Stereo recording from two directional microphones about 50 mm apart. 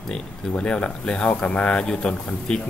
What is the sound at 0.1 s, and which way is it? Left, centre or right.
Speech, left.